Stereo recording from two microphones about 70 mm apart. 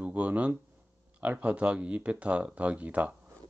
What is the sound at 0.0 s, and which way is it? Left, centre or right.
Speech, right.